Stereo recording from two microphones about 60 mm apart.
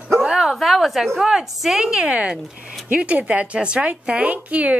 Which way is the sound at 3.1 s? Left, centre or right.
Right.